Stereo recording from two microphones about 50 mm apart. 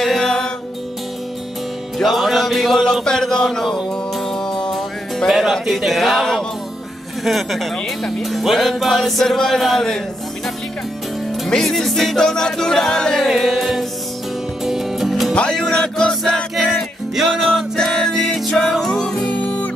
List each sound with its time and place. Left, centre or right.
0.0 s music: centre
2.0 s music: centre
5.3 s speech: centre
11.4 s music: centre
13.3 s music: centre
15.3 s speech: centre
15.7 s music: centre
17.7 s music: centre
19.2 s music: left